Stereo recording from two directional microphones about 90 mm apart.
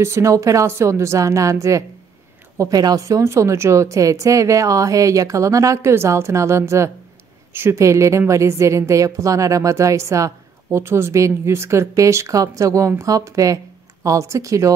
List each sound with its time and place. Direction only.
0.0 s a woman's voice: 35° right (ahead or behind)